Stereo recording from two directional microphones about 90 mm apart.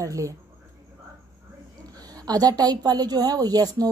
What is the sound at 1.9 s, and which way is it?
A woman's voice, 45° right (ahead or behind).